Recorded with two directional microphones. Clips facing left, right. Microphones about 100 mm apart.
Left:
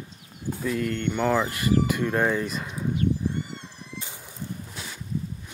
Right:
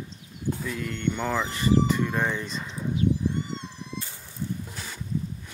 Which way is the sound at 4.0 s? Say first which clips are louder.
Left 1 dB; 15° left (ahead or behind).